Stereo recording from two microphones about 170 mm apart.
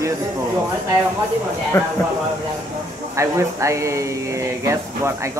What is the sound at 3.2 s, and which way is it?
Speech, 15° right (ahead or behind).